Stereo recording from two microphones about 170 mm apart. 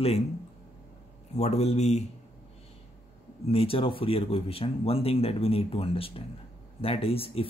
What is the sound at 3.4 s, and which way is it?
Speech, 35° left (ahead or behind).